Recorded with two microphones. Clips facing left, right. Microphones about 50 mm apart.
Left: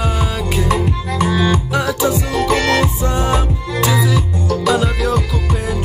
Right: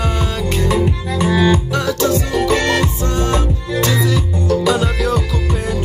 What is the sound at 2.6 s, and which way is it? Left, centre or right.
Music, centre.